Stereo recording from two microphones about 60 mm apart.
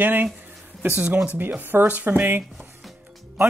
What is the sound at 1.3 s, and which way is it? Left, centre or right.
Speech, right.